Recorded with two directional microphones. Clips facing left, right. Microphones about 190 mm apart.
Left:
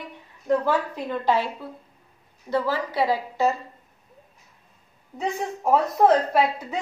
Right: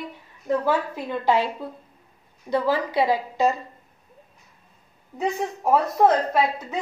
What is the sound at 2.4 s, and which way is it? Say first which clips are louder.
A woman's voice: right 2 dB; 15° right (ahead or behind).